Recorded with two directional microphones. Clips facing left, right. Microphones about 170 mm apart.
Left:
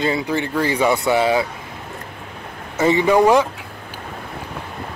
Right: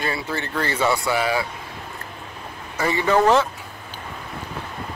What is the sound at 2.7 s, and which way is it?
Speech, 20° left (ahead or behind).